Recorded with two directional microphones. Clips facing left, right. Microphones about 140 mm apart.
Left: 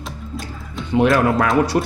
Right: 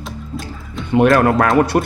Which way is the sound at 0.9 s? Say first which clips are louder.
Right 3 dB; 55° right (ahead or behind).